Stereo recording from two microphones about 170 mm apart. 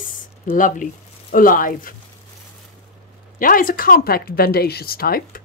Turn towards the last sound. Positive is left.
turn(degrees=60)  # may be behind; listen again after turning